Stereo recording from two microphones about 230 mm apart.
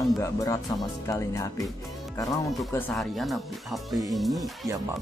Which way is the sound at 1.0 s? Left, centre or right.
Centre.